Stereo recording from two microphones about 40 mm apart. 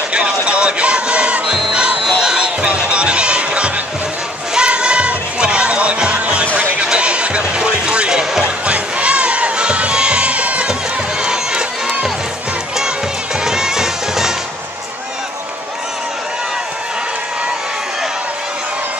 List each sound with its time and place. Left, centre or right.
0.1 s music: right
6.4 s music: right
6.8 s music: right
8.6 s children shouting: right
13.4 s music: centre